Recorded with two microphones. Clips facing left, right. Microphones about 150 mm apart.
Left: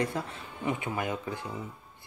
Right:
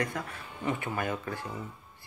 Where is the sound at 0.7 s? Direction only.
15° left (ahead or behind).